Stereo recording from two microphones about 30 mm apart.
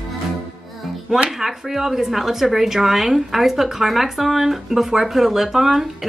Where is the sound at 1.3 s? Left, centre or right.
Centre.